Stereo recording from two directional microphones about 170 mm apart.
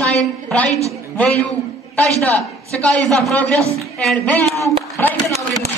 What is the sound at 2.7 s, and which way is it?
A woman's voice, 5° left (ahead or behind).